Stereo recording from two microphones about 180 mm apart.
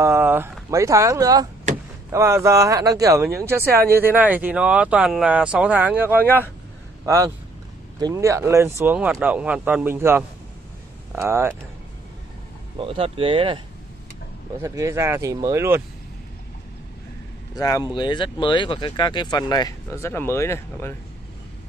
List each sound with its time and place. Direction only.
0.0 s speech: 15° right (ahead or behind)
6.2 s speech: 10° left (ahead or behind)
7.1 s speech: 15° right (ahead or behind)
12.7 s speech: 30° right (ahead or behind)
14.6 s speech: 15° right (ahead or behind)
17.6 s speech: 20° left (ahead or behind)